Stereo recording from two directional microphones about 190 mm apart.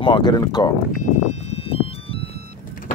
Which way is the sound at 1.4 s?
30° left (ahead or behind).